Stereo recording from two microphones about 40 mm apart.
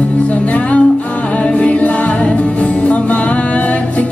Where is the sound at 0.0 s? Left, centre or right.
Left.